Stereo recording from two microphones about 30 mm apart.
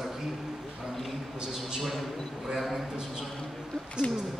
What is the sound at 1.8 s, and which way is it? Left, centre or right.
Speech, centre.